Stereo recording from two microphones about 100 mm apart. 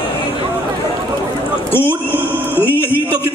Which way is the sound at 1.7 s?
20° left (ahead or behind).